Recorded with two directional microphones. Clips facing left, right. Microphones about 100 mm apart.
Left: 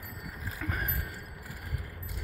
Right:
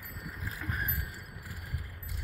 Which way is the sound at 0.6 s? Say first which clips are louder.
Left 2 dB; 85° left.